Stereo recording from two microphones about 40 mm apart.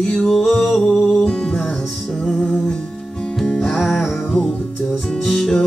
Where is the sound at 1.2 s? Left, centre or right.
Centre.